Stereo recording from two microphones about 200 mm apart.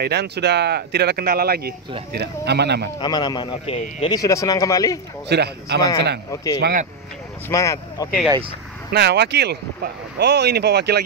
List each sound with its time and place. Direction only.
0.0 s speech: 55° right (ahead or behind)
3.0 s speech: 20° left (ahead or behind)
4.1 s a man's voice: 15° left (ahead or behind)
5.3 s speech: 55° right (ahead or behind)
6.3 s a man's voice: 15° left (ahead or behind)
6.6 s speech: 40° right (ahead or behind)
7.4 s a man's voice: 15° left (ahead or behind)
8.9 s speech: 55° right (ahead or behind)